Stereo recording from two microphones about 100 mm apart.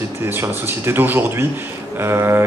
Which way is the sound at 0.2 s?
25° right (ahead or behind).